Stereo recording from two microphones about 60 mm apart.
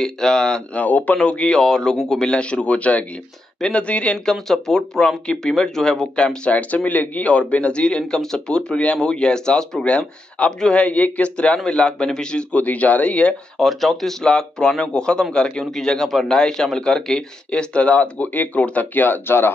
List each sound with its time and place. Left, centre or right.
0.0 s speech: centre
0.7 s a man's voice: left
4.3 s speech: centre
6.5 s a man's voice: left
13.6 s speech: centre
14.2 s speech: centre; by 19.5 s left